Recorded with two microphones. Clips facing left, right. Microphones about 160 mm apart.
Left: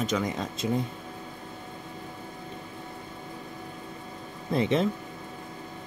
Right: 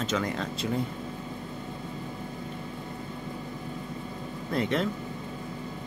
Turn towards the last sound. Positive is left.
turn(degrees=20)  # may be behind; listen again after turning